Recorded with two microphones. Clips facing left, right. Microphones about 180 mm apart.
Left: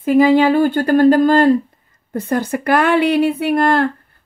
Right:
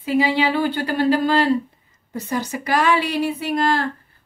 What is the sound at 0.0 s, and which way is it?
Speech, 50° left (ahead or behind).